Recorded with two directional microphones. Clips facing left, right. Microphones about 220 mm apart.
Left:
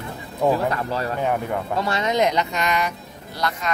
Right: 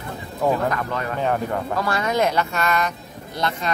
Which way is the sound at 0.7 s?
30° left (ahead or behind).